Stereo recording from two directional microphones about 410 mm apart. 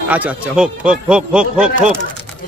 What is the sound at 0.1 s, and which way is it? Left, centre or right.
Speech, centre.